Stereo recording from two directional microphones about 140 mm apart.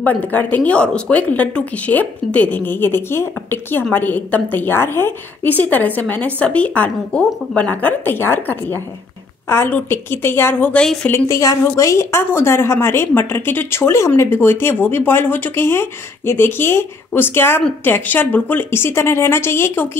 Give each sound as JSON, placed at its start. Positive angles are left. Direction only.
{"t": 0.0, "sound": "a woman's voice", "side_deg": 10}
{"t": 11.1, "sound": "a woman's voice", "side_deg": 20}